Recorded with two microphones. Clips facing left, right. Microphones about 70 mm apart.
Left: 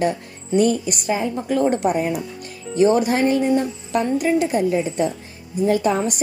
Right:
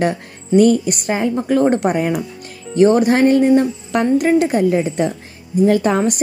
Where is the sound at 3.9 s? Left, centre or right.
Right.